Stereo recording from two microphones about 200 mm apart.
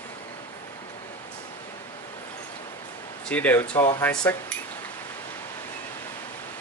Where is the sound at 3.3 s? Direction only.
10° left (ahead or behind).